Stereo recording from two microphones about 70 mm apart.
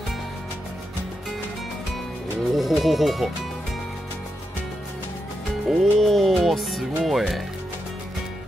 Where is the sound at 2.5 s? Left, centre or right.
Centre.